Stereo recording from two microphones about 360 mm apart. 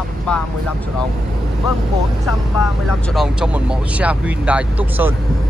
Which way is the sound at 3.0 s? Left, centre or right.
Centre.